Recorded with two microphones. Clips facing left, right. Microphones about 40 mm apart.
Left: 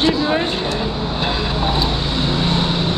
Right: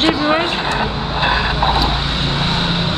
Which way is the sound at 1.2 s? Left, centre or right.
Right.